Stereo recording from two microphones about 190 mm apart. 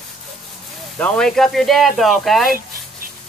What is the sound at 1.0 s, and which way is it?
Speech, 5° left (ahead or behind).